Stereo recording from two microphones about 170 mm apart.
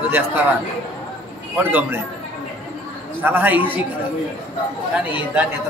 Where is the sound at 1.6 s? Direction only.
10° right (ahead or behind).